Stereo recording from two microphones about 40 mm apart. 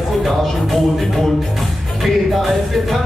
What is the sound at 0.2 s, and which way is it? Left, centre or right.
Speech, centre.